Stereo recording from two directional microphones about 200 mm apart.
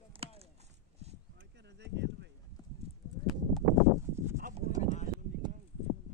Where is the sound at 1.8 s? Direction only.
60° right (ahead or behind).